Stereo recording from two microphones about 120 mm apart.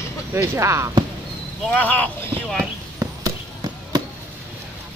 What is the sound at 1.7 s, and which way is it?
Speech, 10° left (ahead or behind).